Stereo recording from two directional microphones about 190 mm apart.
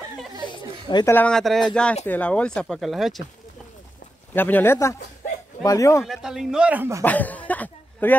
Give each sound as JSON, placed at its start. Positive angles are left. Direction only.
{"t": 0.5, "sound": "a sound", "side_deg": 25}
{"t": 1.1, "sound": "speech", "side_deg": 5}
{"t": 4.3, "sound": "speech", "side_deg": 10}
{"t": 6.0, "sound": "speech", "side_deg": 0}
{"t": 7.0, "sound": "speech", "side_deg": 10}